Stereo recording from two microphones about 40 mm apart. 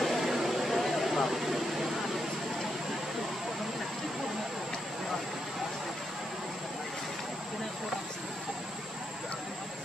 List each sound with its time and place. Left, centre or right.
0.0 s vehicle: centre